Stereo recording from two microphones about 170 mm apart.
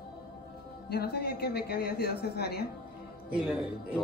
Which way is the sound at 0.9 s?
70° left (ahead or behind).